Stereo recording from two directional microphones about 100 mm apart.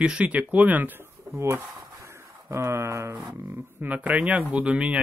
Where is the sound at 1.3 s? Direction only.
25° right (ahead or behind).